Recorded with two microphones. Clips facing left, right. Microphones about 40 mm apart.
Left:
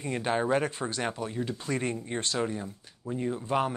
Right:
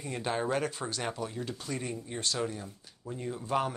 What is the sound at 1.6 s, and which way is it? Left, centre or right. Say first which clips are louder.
Speech: left 5 dB; left.